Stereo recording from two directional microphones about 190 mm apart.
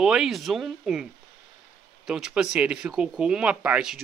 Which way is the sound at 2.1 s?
5° right (ahead or behind).